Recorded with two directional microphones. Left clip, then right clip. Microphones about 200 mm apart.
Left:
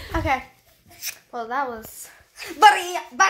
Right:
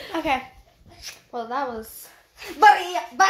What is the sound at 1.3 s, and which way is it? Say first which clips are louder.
A child's voice: left 1 dB; 15° left (ahead or behind).